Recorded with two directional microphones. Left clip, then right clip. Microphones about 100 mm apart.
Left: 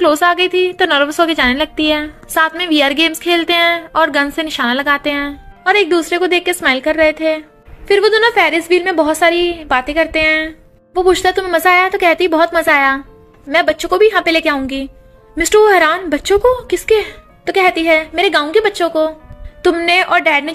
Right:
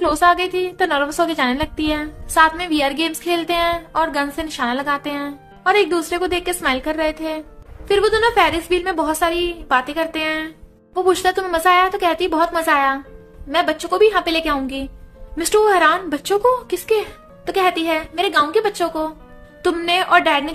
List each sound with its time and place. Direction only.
0.0 s a woman's voice: 35° left (ahead or behind)